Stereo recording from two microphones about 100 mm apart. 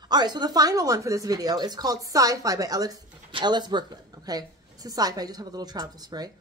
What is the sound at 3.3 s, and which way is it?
Speech, 50° right (ahead or behind).